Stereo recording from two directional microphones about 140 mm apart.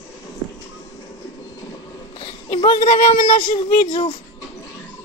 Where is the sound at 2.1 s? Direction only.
40° left (ahead or behind).